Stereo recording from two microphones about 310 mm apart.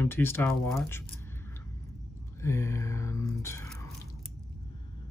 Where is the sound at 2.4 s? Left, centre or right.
Centre.